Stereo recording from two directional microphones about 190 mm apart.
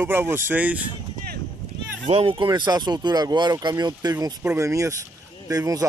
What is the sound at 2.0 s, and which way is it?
Speech, 30° right (ahead or behind).